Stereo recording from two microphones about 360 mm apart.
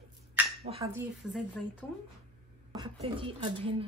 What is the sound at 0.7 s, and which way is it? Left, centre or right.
Speech, centre.